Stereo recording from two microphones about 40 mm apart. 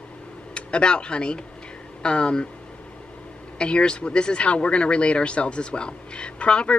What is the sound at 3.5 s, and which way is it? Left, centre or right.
Speech, left.